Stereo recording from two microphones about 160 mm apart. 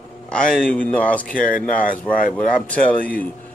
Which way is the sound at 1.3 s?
60° left (ahead or behind).